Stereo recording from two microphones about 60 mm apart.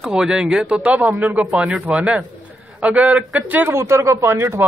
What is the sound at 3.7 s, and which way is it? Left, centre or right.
Speech, right.